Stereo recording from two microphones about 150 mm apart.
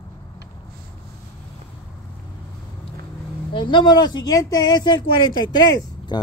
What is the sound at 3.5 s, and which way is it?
Speech, 30° left (ahead or behind).